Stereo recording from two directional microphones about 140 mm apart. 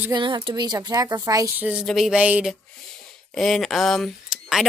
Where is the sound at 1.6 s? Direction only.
10° right (ahead or behind).